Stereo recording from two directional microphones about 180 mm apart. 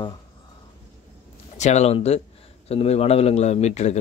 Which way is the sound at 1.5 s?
40° left (ahead or behind).